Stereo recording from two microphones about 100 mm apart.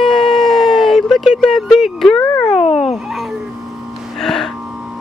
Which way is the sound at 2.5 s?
90° left.